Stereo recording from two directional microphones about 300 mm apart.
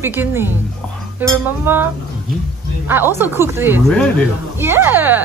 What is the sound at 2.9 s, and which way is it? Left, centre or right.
A woman's voice, centre.